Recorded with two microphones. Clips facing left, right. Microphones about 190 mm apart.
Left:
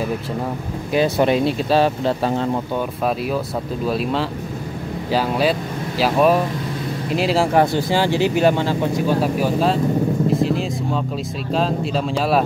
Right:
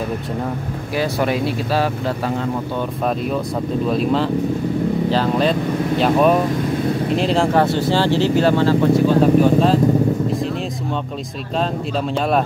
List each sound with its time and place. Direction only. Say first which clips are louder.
0.9 s speech: left 3 dB; 20° left (ahead or behind)
3.8 s speech: right 3 dB; 5° left (ahead or behind)
10.4 s vehicle: left 3 dB; centre (ahead or behind)